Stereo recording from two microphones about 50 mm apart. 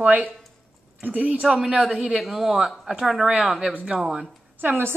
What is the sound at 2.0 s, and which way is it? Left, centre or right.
Speech, centre.